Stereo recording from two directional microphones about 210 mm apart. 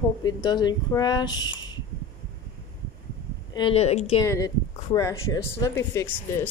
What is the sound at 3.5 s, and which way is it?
Music, 25° left (ahead or behind).